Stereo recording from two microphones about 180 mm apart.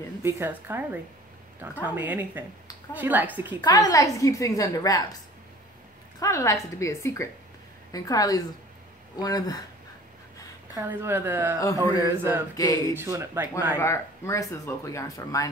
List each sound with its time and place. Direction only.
0.2 s speech: 15° right (ahead or behind)
3.6 s a woman's voice: 20° left (ahead or behind)
6.1 s a woman's voice: 15° left (ahead or behind)
10.8 s speech: 10° right (ahead or behind)
11.6 s a woman's voice: 20° left (ahead or behind)
12.0 s speech: 10° right (ahead or behind)
12.5 s a woman's voice: 20° left (ahead or behind)
12.9 s speech: 15° right (ahead or behind)
13.7 s a woman's voice: 15° left (ahead or behind)